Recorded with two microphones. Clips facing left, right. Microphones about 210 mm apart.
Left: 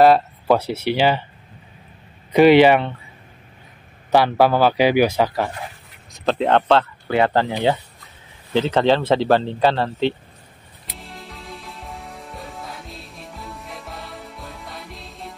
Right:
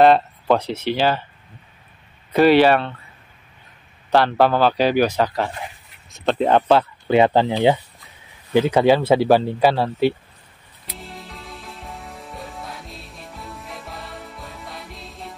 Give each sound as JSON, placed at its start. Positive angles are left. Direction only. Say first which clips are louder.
{"t": 0.0, "sound": "speech", "louder": "even", "side_deg": 0}
{"t": 2.3, "sound": "speech", "louder": "left 2 dB", "side_deg": 15}
{"t": 4.1, "sound": "speech", "louder": "left 1 dB", "side_deg": 10}
{"t": 6.1, "sound": "speech", "louder": "right 1 dB", "side_deg": 0}
{"t": 8.5, "sound": "speech", "louder": "right 2 dB", "side_deg": -10}
{"t": 11.0, "sound": "music", "louder": "right 1 dB", "side_deg": 0}